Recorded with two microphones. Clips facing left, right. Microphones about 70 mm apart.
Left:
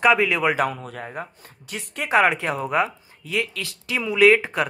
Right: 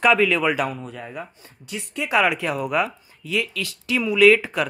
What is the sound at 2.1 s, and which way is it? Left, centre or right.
Speech, left.